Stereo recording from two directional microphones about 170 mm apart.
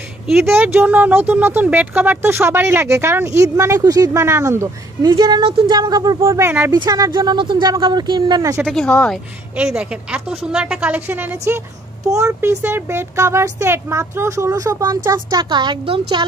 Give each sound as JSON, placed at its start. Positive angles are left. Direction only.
{"t": 0.5, "sound": "speech", "side_deg": -10}
{"t": 8.6, "sound": "speech", "side_deg": 5}
{"t": 9.6, "sound": "speech", "side_deg": -5}